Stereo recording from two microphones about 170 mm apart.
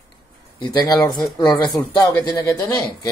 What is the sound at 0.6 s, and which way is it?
Speech, 25° left (ahead or behind).